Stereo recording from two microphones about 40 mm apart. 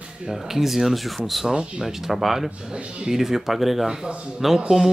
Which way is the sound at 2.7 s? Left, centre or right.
Right.